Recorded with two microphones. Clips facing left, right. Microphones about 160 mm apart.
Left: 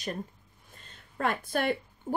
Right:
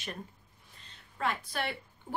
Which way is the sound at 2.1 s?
45° left (ahead or behind).